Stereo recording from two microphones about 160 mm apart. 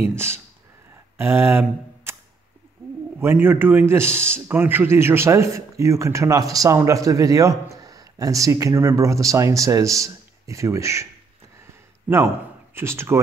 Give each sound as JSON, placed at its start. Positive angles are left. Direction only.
{"t": 0.1, "sound": "a man's voice", "side_deg": -15}
{"t": 3.2, "sound": "a man's voice", "side_deg": -15}
{"t": 12.7, "sound": "a man's voice", "side_deg": -15}